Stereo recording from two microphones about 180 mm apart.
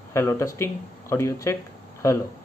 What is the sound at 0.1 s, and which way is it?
Speech, 15° left (ahead or behind).